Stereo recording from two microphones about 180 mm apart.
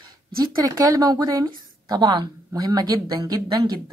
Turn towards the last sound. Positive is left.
turn(degrees=-20)  # may be behind; listen again after turning